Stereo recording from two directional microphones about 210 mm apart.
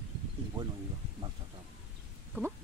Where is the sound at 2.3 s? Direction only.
10° right (ahead or behind).